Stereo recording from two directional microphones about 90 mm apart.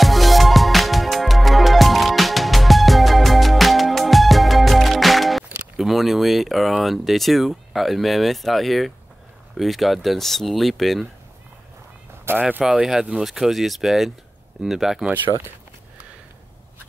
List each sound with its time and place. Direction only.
0.0 s music: centre (ahead or behind)
9.6 s speech: centre (ahead or behind)
12.3 s speech: 20° right (ahead or behind)
12.6 s speech: 5° right (ahead or behind)